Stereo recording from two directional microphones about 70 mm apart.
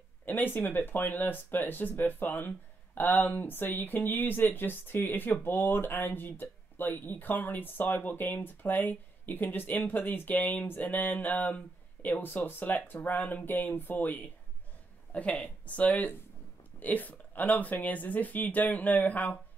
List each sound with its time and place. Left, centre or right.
0.2 s speech: left
15.4 s speech: left